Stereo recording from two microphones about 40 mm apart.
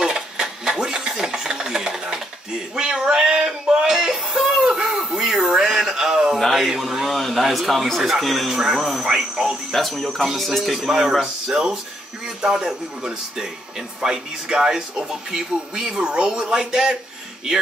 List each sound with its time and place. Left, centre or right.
0.0 s a sound: centre
2.7 s male singing: centre
3.2 s a sound: centre
4.6 s chicken: centre
5.5 s a sound: centre
6.3 s a man's voice: centre
8.5 s speech: centre
9.7 s speech: centre
16.0 s speech: right
16.3 s speech: centre